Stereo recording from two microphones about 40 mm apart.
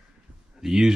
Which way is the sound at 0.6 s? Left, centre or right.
Centre.